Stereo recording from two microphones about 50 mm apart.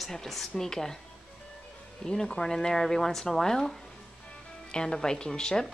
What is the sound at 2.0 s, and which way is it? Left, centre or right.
A woman's voice, centre.